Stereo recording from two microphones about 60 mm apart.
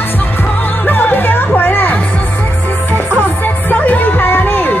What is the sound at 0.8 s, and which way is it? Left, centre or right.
Music, left.